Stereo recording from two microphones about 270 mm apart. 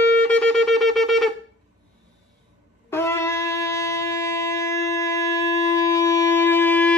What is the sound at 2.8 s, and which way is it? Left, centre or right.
Shofar, centre.